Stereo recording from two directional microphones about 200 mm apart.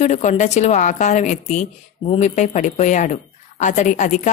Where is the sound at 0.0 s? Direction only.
35° left (ahead or behind).